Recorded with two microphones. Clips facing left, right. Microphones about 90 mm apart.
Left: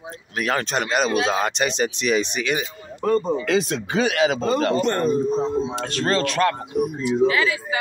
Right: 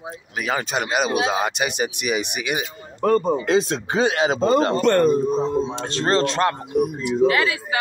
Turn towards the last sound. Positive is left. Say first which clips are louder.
# right 1 dB
turn(degrees=0)  # may be behind; listen again after turning